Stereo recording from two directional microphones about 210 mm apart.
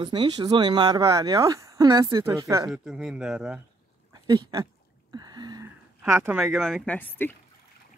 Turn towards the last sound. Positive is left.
turn(degrees=10)  # may be behind; listen again after turning